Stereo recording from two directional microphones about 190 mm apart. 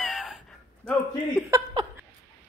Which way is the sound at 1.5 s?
20° right (ahead or behind).